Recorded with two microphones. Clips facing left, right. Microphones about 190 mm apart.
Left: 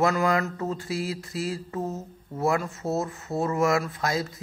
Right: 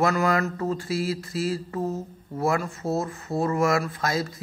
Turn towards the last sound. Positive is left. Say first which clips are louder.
# right 1 dB
turn(degrees=20)  # may be behind; listen again after turning